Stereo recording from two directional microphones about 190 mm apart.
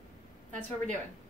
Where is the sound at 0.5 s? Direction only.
40° right (ahead or behind).